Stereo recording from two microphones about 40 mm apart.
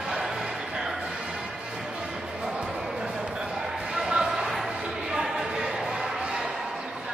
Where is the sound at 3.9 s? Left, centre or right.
Centre.